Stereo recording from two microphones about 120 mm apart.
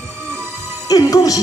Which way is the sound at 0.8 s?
30° left (ahead or behind).